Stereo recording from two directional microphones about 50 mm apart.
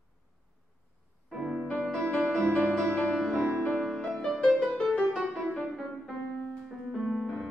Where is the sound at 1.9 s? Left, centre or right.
Centre.